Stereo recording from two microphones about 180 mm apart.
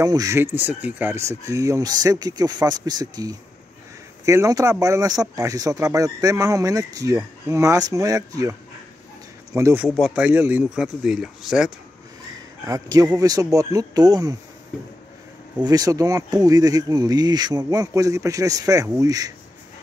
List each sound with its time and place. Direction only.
0.0 s speech: 20° right (ahead or behind)
9.8 s speech: centre (ahead or behind)
12.6 s speech: 20° right (ahead or behind)
15.6 s speech: 20° right (ahead or behind)